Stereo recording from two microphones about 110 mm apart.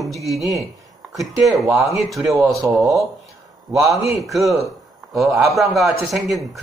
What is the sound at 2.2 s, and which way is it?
Speech, 30° right (ahead or behind).